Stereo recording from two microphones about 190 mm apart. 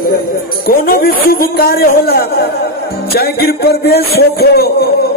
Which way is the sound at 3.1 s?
55° left (ahead or behind).